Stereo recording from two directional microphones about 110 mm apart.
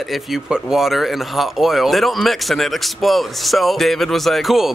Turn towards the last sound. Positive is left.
turn(degrees=0)  # may be behind; listen again after turning